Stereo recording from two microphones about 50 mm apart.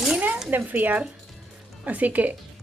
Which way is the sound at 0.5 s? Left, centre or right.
Right.